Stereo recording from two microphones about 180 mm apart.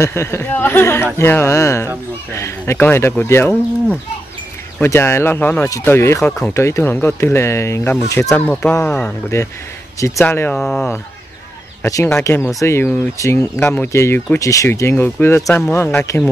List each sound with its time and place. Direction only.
0.0 s speech: 15° left (ahead or behind)
11.8 s speech: 15° left (ahead or behind)